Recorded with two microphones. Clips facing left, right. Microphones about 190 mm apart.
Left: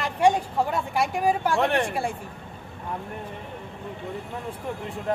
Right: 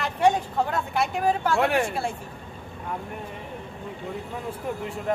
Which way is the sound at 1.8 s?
15° left (ahead or behind).